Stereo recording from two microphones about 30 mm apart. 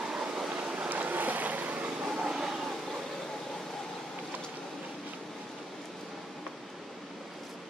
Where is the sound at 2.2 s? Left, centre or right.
Right.